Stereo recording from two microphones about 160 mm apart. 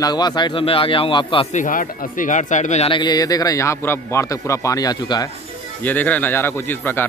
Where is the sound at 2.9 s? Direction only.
25° left (ahead or behind).